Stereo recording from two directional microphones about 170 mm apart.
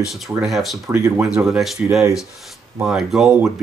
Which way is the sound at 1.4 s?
Centre (ahead or behind).